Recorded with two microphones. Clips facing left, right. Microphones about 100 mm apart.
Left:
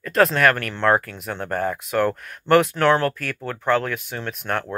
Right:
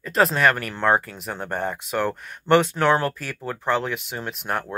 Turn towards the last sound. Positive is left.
turn(degrees=-10)  # may be behind; listen again after turning